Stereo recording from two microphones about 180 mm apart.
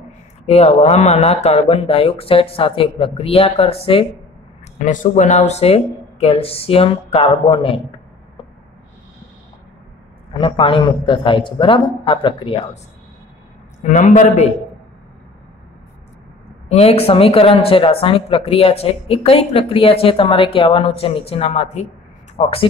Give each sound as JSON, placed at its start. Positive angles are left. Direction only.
{"t": 0.5, "sound": "speech", "side_deg": 35}
{"t": 4.8, "sound": "speech", "side_deg": 45}
{"t": 10.3, "sound": "a man's voice", "side_deg": 30}
{"t": 13.8, "sound": "a man's voice", "side_deg": 45}
{"t": 16.6, "sound": "speech", "side_deg": 35}